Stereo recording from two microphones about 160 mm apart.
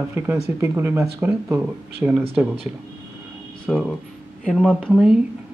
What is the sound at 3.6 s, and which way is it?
Speech, 5° left (ahead or behind).